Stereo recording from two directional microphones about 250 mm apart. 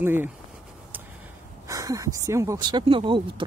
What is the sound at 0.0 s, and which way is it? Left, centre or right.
Speech, centre.